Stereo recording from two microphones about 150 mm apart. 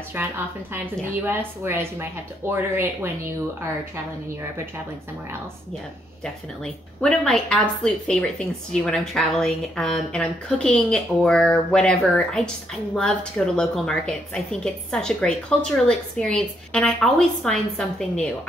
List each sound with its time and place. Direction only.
0.1 s a woman's voice: 15° right (ahead or behind)
6.2 s a woman's voice: 5° left (ahead or behind)